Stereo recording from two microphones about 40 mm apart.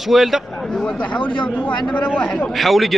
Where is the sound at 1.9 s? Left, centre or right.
Left.